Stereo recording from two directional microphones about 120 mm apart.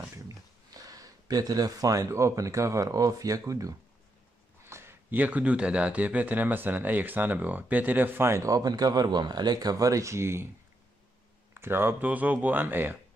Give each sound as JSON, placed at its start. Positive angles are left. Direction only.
{"t": 0.3, "sound": "speech", "side_deg": -30}
{"t": 11.5, "sound": "speech", "side_deg": -20}